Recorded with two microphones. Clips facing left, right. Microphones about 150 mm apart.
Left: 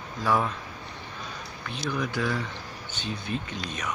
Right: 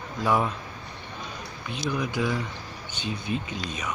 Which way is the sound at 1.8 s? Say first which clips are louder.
Right 1 dB; 10° right (ahead or behind).